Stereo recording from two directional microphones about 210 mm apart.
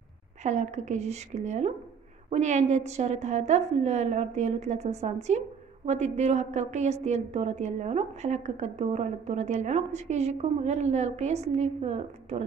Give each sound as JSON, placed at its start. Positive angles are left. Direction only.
{"t": 0.4, "sound": "a woman's voice", "side_deg": -35}